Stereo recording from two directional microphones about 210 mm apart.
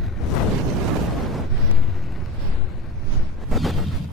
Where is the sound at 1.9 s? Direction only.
Centre (ahead or behind).